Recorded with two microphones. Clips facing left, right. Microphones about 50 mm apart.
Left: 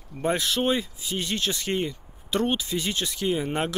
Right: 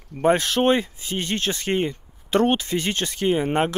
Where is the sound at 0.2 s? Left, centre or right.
Right.